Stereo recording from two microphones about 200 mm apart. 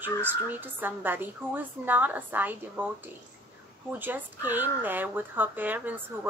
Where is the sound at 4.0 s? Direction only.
10° right (ahead or behind).